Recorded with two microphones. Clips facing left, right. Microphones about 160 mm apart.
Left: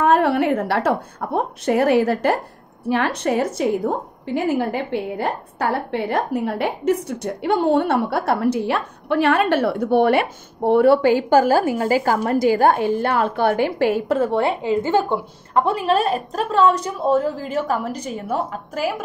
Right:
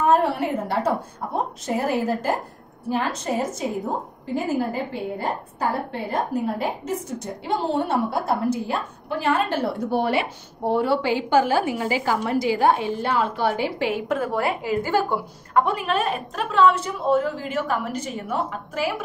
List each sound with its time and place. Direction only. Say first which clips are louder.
0.0 s a woman's voice: left 3 dB; 70° left (ahead or behind); by 14.0 s 45° left (ahead or behind)
14.0 s a woman's voice: left 5 dB; 30° left (ahead or behind)